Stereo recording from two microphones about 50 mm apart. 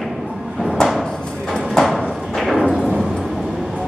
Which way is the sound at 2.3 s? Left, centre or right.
Centre.